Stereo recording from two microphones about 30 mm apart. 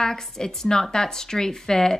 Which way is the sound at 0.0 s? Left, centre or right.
Centre.